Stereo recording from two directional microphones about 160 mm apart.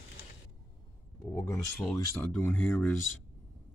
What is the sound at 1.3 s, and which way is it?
Speech, 20° left (ahead or behind).